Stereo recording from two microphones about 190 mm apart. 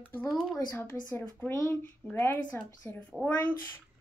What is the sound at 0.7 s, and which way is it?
Speech, 10° left (ahead or behind).